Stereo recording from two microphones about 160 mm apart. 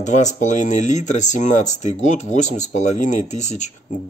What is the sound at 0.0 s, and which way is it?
Speech, 45° left (ahead or behind).